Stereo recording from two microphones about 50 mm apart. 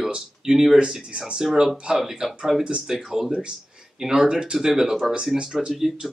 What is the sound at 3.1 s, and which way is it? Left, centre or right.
Speech, centre.